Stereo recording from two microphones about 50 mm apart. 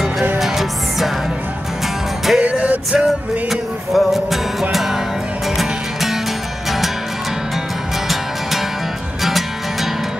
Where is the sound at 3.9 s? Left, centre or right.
Centre.